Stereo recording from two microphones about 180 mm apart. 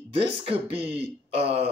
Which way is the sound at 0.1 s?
30° right (ahead or behind).